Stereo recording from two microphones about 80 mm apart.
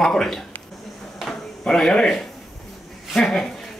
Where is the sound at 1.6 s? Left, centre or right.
Centre.